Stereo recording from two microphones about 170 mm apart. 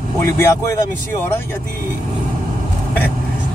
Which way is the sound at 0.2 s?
15° left (ahead or behind).